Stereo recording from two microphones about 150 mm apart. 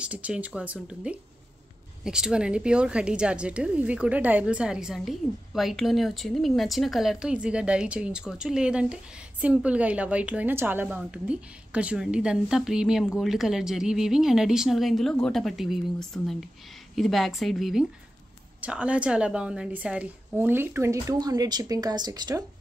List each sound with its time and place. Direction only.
0.0 s a woman's voice: 10° right (ahead or behind); by 22.4 s 25° right (ahead or behind)